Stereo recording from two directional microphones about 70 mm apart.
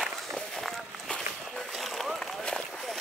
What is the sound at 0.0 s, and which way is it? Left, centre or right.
Walk, centre.